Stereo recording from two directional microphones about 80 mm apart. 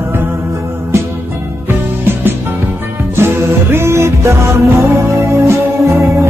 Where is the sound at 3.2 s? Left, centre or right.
Right.